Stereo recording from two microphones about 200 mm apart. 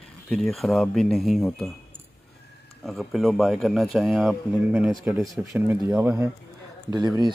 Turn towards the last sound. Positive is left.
turn(degrees=-20)  # may be behind; listen again after turning